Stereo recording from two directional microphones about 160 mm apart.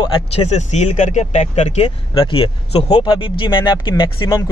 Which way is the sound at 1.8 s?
35° left (ahead or behind).